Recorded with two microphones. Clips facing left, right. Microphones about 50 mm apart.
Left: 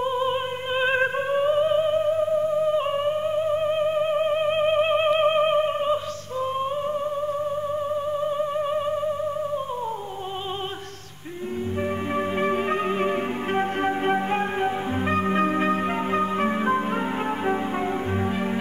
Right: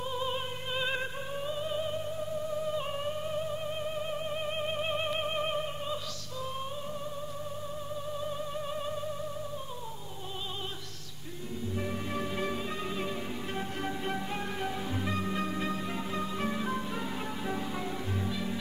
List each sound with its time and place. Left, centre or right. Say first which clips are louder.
0.0 s music: left 10 dB; left
7.9 s music: left 11 dB; left
12.1 s music: left 11 dB; left